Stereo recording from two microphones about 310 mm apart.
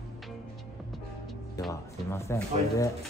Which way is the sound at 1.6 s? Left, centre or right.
Centre.